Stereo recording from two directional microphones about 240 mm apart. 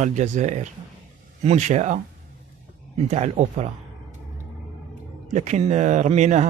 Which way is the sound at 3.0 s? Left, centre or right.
Right.